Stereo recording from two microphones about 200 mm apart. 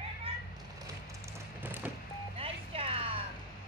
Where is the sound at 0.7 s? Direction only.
15° right (ahead or behind).